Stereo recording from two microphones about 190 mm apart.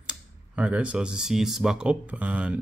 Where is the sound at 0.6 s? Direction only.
5° right (ahead or behind).